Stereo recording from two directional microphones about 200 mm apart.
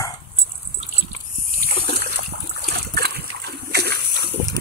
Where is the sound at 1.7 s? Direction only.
50° right (ahead or behind).